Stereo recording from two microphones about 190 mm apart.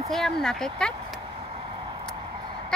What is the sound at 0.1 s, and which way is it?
Speech, centre (ahead or behind).